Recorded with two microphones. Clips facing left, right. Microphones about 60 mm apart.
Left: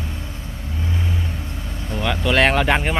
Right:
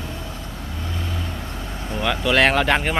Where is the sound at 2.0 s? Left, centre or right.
Centre.